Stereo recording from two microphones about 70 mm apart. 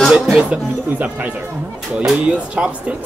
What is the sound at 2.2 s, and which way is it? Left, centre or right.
Speech, centre.